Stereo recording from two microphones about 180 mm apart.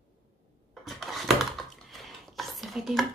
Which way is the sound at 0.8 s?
Centre (ahead or behind).